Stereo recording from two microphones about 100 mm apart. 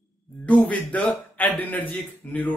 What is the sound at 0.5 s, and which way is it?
A man's voice, 15° left (ahead or behind).